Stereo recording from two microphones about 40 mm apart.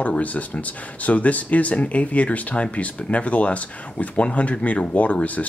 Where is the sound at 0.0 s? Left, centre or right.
Left.